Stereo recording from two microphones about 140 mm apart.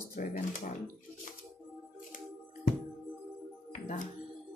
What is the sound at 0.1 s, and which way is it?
Speech, 65° left (ahead or behind).